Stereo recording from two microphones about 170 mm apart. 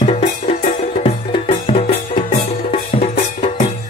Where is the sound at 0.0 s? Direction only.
35° left (ahead or behind).